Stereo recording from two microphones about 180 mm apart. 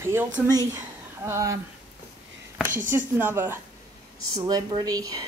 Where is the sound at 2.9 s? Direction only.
10° right (ahead or behind).